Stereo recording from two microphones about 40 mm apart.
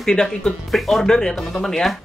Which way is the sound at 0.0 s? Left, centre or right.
Centre.